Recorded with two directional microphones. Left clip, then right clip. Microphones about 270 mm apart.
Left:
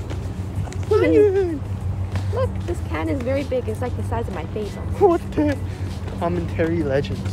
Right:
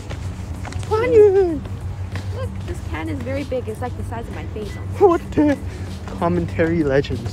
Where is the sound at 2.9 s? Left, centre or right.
Centre.